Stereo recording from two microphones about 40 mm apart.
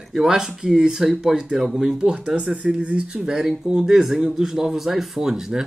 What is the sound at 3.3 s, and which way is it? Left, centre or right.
Speech, centre.